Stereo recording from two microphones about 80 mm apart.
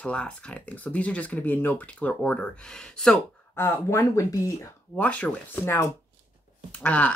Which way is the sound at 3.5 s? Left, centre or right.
Left.